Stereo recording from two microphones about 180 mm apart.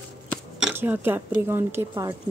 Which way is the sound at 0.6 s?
10° right (ahead or behind).